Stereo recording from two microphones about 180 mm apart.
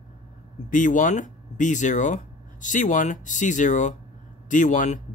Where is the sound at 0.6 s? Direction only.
45° left (ahead or behind).